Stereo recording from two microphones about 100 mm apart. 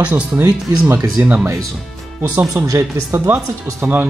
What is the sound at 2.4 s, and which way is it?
Speech, 35° right (ahead or behind).